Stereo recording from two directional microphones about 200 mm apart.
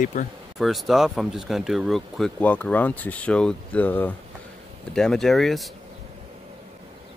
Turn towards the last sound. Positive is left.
turn(degrees=0)  # may be behind; listen again after turning